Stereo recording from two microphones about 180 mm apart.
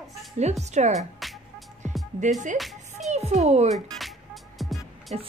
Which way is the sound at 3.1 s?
40° right (ahead or behind).